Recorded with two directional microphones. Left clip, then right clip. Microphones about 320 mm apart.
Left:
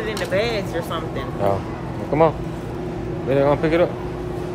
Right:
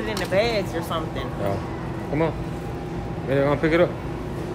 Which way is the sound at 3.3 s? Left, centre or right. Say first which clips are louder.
Left 3 dB; centre.